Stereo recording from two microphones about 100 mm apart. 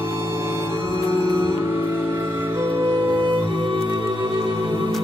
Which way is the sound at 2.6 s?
50° right (ahead or behind).